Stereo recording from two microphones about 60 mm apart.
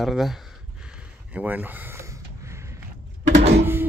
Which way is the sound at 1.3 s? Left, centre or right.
Right.